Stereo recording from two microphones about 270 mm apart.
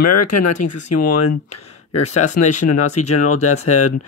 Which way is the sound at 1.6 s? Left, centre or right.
Left.